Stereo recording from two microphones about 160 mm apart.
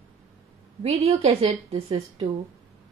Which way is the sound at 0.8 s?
40° right (ahead or behind).